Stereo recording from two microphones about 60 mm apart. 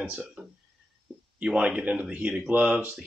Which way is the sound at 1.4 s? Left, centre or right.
Centre.